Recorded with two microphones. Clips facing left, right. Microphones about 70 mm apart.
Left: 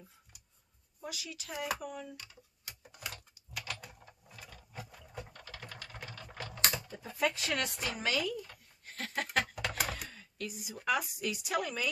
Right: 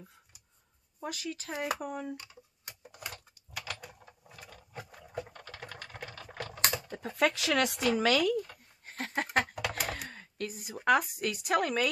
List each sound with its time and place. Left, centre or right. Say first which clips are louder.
1.0 s a woman's voice: right 6 dB; right
3.6 s typing: right 2 dB; centre
6.3 s speech: right 2 dB; right
8.8 s a sound: right 3 dB; right
10.9 s a woman's voice: right 6 dB; right